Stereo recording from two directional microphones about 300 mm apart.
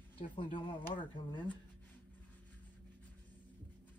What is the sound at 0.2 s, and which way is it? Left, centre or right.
Speech, left.